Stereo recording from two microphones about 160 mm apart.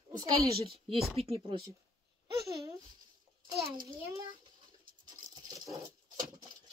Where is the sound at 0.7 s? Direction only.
35° right (ahead or behind).